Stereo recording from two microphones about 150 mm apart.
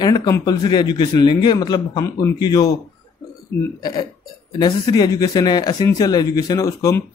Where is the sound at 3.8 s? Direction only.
30° left (ahead or behind).